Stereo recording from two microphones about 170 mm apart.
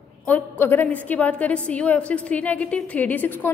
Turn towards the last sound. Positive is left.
turn(degrees=10)  # may be behind; listen again after turning